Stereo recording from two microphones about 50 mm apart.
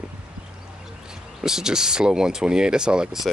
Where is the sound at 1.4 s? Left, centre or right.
Centre.